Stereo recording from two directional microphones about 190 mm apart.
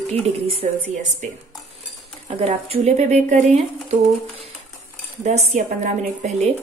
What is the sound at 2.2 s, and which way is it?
Speech, 35° right (ahead or behind).